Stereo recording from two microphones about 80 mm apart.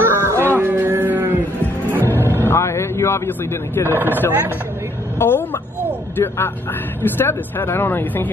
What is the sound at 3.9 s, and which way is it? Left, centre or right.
Speech, right.